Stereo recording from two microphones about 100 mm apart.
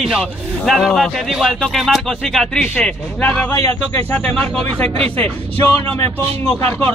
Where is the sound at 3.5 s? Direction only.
30° left (ahead or behind).